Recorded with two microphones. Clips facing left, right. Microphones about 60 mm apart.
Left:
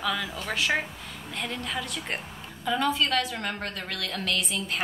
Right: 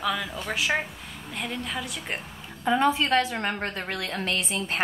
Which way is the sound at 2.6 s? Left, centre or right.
Right.